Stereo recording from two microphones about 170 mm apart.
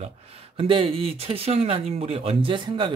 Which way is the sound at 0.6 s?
30° right (ahead or behind).